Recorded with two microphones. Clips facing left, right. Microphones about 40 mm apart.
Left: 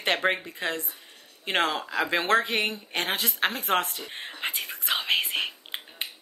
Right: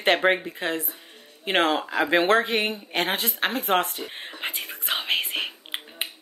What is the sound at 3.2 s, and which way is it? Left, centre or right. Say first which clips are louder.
Whispering: right 2 dB; centre.